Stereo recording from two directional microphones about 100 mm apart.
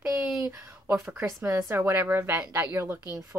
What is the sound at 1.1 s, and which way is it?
A woman's voice, 30° right (ahead or behind).